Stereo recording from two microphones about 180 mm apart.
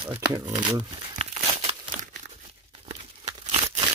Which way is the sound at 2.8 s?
35° right (ahead or behind).